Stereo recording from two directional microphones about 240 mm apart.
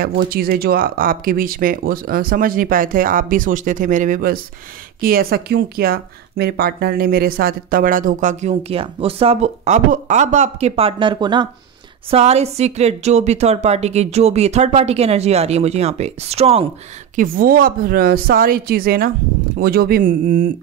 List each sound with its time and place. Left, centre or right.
0.2 s a woman's voice: right